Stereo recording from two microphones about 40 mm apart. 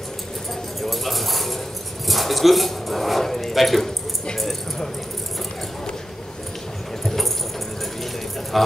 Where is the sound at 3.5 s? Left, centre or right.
Centre.